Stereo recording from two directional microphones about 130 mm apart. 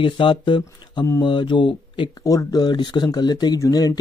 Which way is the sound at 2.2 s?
25° left (ahead or behind).